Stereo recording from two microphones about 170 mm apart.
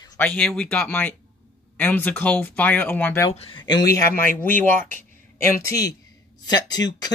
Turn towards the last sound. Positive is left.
turn(degrees=25)  # may be behind; listen again after turning